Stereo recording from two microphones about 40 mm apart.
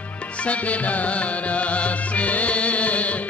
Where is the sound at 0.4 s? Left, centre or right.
Left.